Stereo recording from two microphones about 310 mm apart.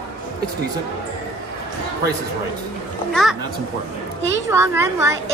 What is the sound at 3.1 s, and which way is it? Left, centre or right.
Speech, centre.